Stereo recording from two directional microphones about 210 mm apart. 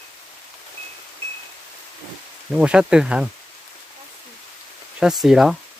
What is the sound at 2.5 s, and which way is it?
Speech, 5° right (ahead or behind).